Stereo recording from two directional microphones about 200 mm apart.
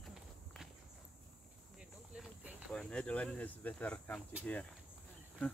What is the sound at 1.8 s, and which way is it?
Cricket, 5° right (ahead or behind).